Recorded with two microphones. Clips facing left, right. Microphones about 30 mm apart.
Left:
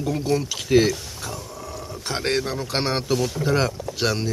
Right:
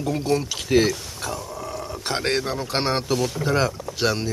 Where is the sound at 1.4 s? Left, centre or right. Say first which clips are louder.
Right 3 dB; right.